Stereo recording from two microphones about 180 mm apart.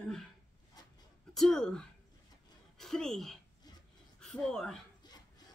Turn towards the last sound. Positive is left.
turn(degrees=5)  # may be behind; listen again after turning